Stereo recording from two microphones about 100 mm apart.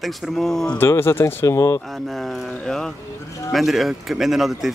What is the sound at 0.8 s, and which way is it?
Speech, 25° left (ahead or behind).